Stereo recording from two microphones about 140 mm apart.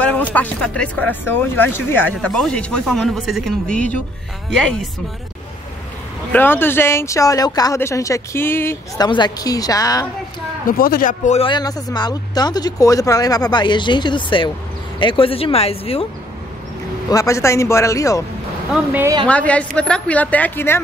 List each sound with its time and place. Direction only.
0.3 s speech: 10° left (ahead or behind)
6.3 s speech: 15° left (ahead or behind)
9.0 s speech: 30° left (ahead or behind)
10.7 s a man's voice: 90° left
11.3 s speech: 35° left (ahead or behind)
17.1 s speech: 20° left (ahead or behind)
19.2 s speech: 10° left (ahead or behind)